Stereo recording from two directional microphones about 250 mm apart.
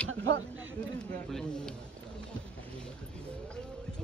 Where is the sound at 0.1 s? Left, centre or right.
Right.